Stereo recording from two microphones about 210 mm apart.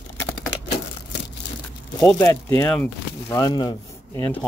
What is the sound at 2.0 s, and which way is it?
Speech, 15° left (ahead or behind).